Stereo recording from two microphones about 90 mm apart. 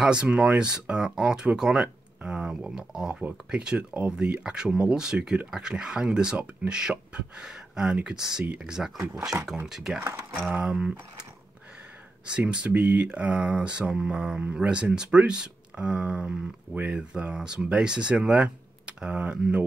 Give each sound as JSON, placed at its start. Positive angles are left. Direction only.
{"t": 0.0, "sound": "speech", "side_deg": -10}
{"t": 9.9, "sound": "speech", "side_deg": -25}
{"t": 10.5, "sound": "speech", "side_deg": -10}
{"t": 12.3, "sound": "speech", "side_deg": -10}